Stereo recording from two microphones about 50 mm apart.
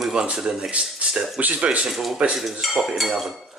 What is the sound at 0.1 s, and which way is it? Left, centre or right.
Speech, centre.